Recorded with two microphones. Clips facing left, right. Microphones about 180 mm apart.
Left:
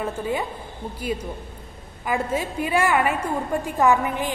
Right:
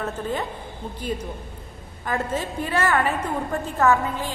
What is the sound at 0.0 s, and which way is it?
Speech, 10° left (ahead or behind).